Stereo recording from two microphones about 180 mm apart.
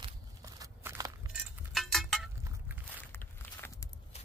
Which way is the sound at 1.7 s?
Centre (ahead or behind).